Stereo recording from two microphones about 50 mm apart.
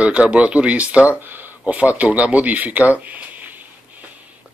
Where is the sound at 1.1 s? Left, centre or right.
Right.